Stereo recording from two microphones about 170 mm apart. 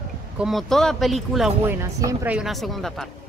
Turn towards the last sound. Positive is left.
turn(degrees=0)  # may be behind; listen again after turning